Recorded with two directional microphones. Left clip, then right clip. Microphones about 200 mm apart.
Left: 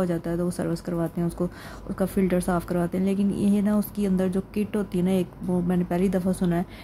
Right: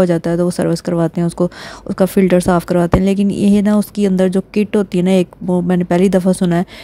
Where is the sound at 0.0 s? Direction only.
45° right (ahead or behind).